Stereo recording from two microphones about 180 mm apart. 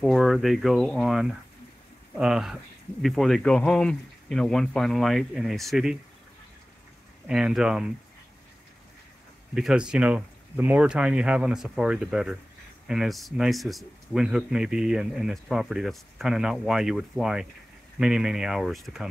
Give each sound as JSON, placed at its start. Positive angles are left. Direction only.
{"t": 0.0, "sound": "speech", "side_deg": 0}
{"t": 7.2, "sound": "speech", "side_deg": -5}
{"t": 9.6, "sound": "speech", "side_deg": -5}